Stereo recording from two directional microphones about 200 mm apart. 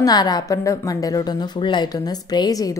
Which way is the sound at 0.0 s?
20° left (ahead or behind).